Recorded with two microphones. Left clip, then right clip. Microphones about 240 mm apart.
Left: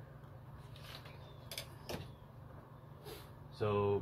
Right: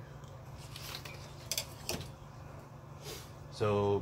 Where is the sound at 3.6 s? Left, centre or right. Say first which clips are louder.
Right 4 dB; centre.